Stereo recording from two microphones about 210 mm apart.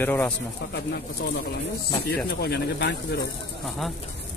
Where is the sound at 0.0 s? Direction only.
10° left (ahead or behind).